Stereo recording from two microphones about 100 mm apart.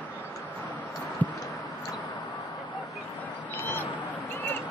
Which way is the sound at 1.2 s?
15° left (ahead or behind).